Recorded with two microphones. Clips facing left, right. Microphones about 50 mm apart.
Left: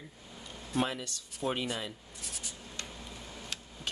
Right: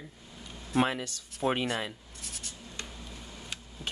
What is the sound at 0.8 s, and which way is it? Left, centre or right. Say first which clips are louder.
Speech: right 5 dB; right.